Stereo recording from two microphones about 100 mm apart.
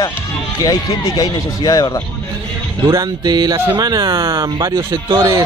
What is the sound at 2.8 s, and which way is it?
Speech, 40° right (ahead or behind).